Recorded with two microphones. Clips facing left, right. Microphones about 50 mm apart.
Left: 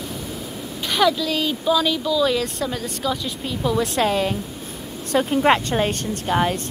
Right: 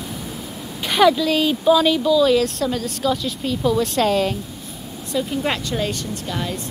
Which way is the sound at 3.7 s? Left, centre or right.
Centre.